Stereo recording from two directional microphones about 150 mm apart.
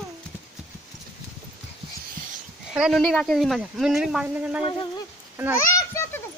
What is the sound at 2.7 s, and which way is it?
Speech, 5° right (ahead or behind).